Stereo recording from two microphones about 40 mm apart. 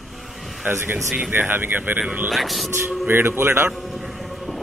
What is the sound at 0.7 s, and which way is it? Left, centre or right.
Speech, right.